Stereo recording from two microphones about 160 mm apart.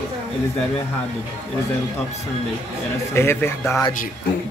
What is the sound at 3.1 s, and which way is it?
Speech, 15° left (ahead or behind).